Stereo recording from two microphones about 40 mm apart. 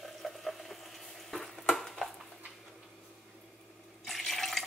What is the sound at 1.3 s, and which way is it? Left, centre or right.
Frying, centre.